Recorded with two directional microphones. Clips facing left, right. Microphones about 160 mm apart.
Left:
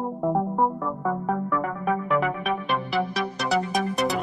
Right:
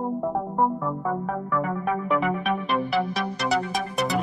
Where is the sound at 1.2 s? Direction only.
Centre (ahead or behind).